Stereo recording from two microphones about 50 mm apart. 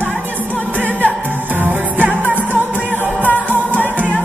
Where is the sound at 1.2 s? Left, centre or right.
Right.